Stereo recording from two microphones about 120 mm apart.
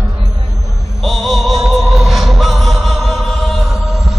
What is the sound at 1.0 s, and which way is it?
Music, centre (ahead or behind).